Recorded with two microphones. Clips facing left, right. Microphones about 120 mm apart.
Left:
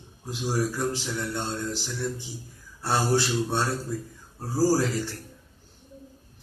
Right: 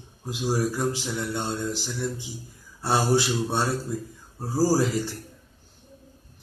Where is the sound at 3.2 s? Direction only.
5° right (ahead or behind).